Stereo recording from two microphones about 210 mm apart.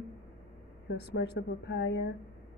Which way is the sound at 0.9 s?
55° left (ahead or behind).